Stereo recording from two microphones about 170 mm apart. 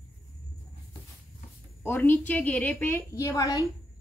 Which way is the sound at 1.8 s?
10° left (ahead or behind).